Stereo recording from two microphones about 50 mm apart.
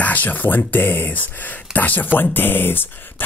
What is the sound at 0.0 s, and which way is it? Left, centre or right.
Speech, left.